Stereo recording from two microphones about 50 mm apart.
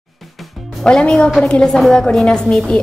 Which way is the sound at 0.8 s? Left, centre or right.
Centre.